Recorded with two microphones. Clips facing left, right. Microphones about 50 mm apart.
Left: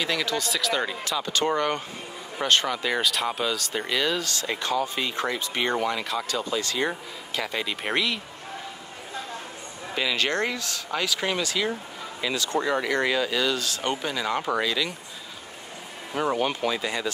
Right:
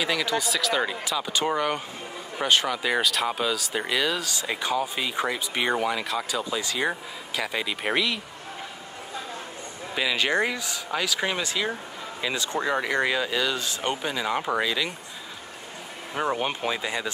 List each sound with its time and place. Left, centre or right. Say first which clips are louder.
0.0 s speech: right 1 dB; centre
9.9 s speech: right 1 dB; centre
11.1 s speech: even; centre
16.2 s speech: left 2 dB; centre